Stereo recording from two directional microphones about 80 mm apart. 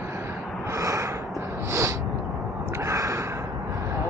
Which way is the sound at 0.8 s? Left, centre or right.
Right.